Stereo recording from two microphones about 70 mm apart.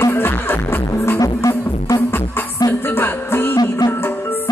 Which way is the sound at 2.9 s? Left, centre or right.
Left.